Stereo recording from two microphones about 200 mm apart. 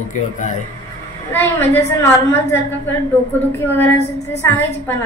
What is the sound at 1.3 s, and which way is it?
A woman's voice, 10° left (ahead or behind).